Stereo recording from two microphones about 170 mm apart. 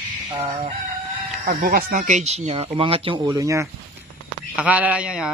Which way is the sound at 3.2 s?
20° right (ahead or behind).